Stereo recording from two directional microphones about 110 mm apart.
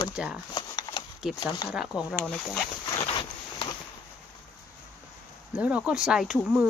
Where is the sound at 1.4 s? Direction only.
40° left (ahead or behind).